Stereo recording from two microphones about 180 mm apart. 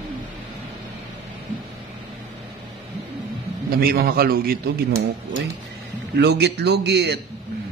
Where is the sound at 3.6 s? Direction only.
55° right (ahead or behind).